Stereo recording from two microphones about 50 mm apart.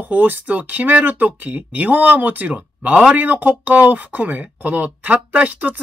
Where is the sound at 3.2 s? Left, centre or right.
Right.